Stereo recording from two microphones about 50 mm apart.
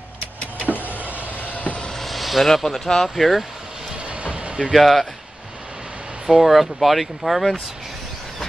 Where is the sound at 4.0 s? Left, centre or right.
Right.